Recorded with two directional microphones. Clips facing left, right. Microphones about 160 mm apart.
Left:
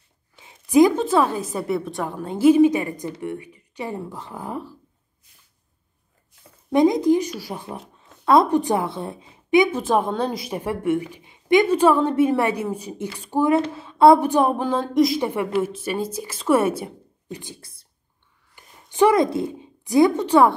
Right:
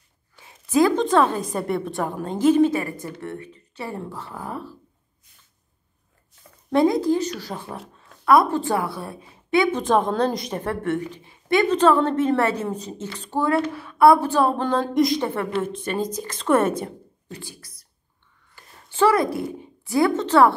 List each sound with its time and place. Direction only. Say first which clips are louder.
0.4 s a sound: left 4 dB; 20° left (ahead or behind)
0.9 s a woman's voice: right 1 dB; 5° left (ahead or behind)
6.7 s a woman's voice: left 2 dB; 15° left (ahead or behind)
7.7 s a woman's voice: left 1 dB; 25° left (ahead or behind)
14.7 s a woman's voice: left 1 dB; centre (ahead or behind)
17.4 s speech: even; 25° left (ahead or behind)
18.5 s a sound: even; 15° left (ahead or behind)